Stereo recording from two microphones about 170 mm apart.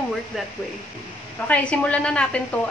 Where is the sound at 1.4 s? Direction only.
10° left (ahead or behind).